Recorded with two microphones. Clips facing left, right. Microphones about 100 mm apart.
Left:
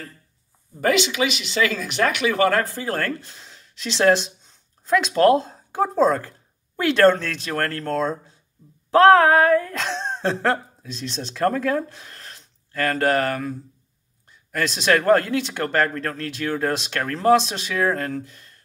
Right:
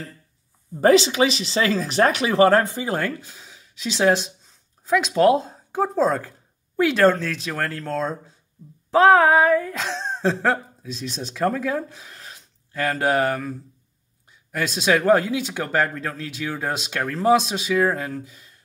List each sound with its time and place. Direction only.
0.7 s speech: 35° right (ahead or behind)
2.7 s speech: 15° right (ahead or behind)